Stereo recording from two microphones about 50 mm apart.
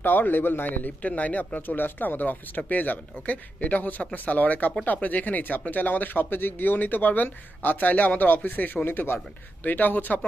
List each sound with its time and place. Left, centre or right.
0.0 s a man's voice: left
8.8 s a man's voice: left